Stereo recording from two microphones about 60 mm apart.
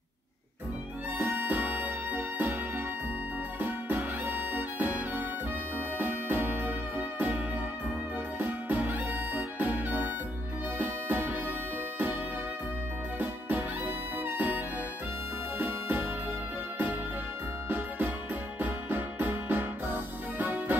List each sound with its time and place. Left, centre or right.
1.1 s music: right
3.5 s music: right
13.2 s music: right
15.6 s music: right
17.6 s music: right